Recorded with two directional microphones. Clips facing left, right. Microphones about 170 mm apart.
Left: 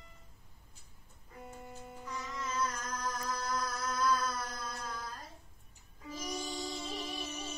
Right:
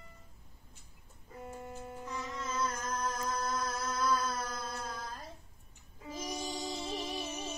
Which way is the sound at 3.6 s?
25° right (ahead or behind).